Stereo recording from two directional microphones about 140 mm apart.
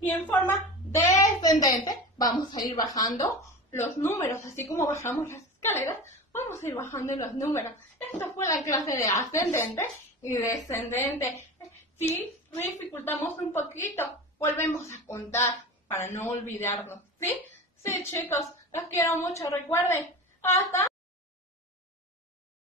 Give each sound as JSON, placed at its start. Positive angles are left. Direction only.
{"t": 0.0, "sound": "speech", "side_deg": 10}
{"t": 0.9, "sound": "a woman's voice", "side_deg": 20}
{"t": 17.8, "sound": "a woman's voice", "side_deg": 20}